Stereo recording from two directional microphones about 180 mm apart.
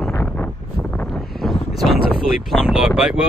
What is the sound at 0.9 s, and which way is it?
Wind noise, 5° left (ahead or behind).